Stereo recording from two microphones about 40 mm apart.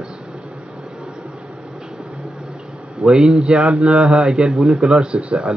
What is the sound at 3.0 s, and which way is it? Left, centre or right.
Speech, right.